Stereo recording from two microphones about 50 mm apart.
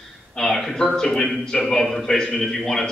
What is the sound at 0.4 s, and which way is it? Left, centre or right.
Speech, centre.